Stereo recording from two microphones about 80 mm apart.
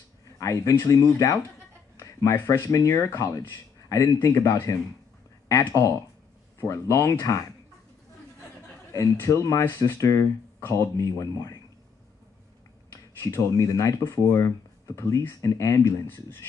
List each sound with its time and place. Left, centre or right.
0.4 s speech: left
9.3 s speech: left
9.7 s speech: left
9.9 s speech: left
12.9 s speech: left
16.1 s speech: left